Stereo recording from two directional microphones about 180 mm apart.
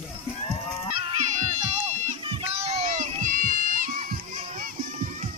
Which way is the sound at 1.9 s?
35° right (ahead or behind).